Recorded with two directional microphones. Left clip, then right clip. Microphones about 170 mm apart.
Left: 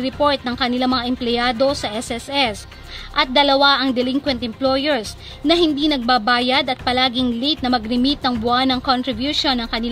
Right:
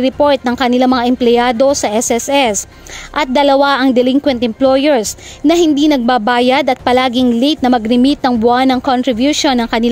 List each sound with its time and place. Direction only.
0.0 s a woman's voice: 45° right (ahead or behind)